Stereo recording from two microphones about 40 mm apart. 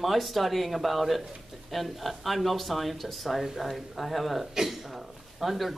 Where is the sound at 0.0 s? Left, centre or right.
Centre.